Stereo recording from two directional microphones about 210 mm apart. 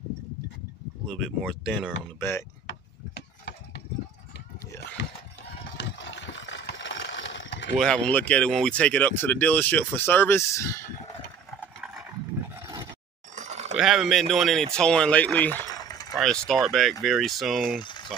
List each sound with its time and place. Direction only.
1.0 s speech: centre (ahead or behind)
2.1 s speech: 10° left (ahead or behind)
3.2 s a sound: 55° left (ahead or behind)
5.8 s a sound: 60° left (ahead or behind)
7.8 s speech: 5° left (ahead or behind)
12.5 s roar: 15° right (ahead or behind)
13.3 s a sound: 35° right (ahead or behind)
13.7 s speech: centre (ahead or behind); by 16.2 s 15° left (ahead or behind)
16.2 s speech: centre (ahead or behind)